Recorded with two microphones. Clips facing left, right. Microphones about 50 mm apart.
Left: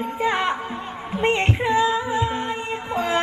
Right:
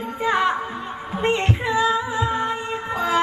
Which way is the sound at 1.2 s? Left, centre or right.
Left.